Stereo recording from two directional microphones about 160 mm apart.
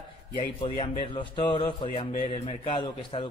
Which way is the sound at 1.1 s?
30° left (ahead or behind).